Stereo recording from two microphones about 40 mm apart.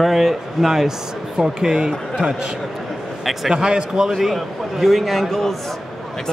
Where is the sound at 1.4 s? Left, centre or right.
Centre.